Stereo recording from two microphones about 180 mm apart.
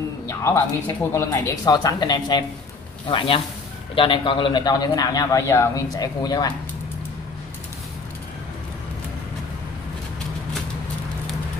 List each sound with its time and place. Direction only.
0.3 s a man's voice: 15° left (ahead or behind)